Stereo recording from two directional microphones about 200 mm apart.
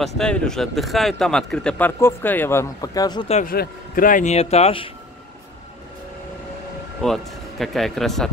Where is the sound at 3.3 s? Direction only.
45° left (ahead or behind); by 4.9 s 30° left (ahead or behind).